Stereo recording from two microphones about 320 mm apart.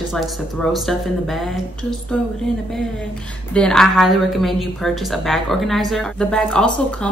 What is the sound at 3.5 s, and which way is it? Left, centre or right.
Speech, centre.